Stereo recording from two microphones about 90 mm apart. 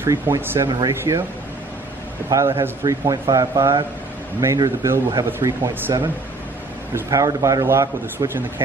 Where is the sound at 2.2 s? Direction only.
35° right (ahead or behind).